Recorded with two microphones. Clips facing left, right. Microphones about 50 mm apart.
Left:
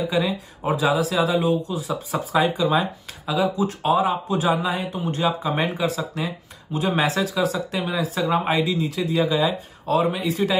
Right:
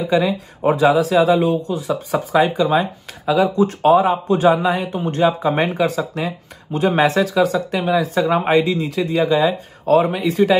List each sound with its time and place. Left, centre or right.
0.1 s speech: right